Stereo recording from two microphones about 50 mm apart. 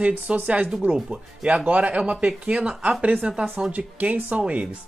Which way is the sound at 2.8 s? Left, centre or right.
Right.